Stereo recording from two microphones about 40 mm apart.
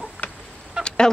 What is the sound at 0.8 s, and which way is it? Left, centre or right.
Fowl, left.